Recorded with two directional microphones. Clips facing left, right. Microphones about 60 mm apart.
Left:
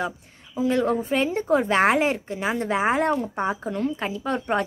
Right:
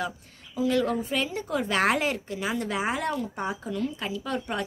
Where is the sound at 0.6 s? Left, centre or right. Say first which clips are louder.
Left 3 dB; left.